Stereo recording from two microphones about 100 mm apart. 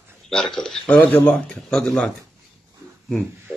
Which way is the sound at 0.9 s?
15° left (ahead or behind).